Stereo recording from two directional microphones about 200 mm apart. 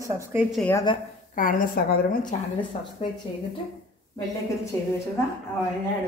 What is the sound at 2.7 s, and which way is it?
Speech, 30° left (ahead or behind).